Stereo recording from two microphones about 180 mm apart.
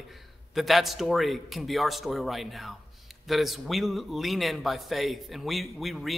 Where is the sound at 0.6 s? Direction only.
Centre (ahead or behind).